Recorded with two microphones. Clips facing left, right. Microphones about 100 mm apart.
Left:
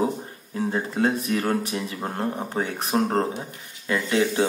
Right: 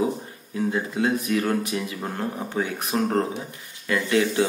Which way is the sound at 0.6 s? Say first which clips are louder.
Even; 35° left (ahead or behind).